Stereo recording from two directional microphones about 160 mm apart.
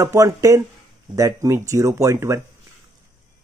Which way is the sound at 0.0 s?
20° right (ahead or behind).